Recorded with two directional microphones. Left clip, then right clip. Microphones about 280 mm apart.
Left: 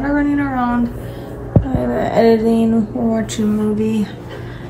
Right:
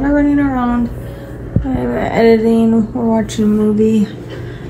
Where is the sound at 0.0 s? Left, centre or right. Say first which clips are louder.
Right 4 dB; centre.